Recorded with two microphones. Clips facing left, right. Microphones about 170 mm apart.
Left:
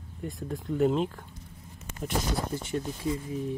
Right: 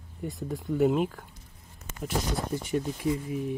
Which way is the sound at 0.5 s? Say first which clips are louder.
Right 1 dB; 5° right (ahead or behind).